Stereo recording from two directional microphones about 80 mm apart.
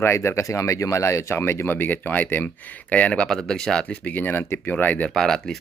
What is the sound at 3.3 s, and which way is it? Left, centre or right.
Speech, centre.